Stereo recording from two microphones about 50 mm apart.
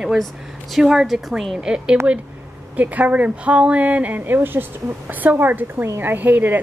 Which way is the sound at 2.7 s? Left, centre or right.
Right.